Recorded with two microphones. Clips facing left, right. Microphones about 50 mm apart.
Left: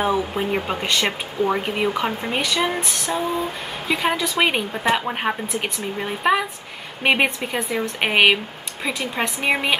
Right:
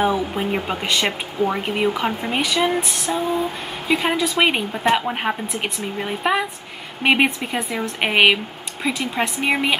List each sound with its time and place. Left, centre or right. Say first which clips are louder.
0.0 s speech: right 1 dB; centre